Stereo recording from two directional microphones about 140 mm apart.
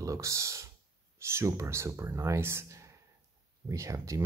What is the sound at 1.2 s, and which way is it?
Speech, 20° right (ahead or behind).